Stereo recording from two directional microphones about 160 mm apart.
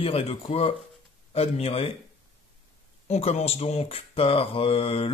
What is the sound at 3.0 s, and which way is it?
Speech, 40° left (ahead or behind).